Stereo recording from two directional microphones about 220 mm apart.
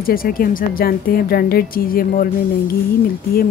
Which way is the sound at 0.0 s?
40° left (ahead or behind).